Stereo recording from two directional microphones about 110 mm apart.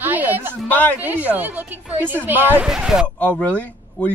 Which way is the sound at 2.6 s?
5° right (ahead or behind).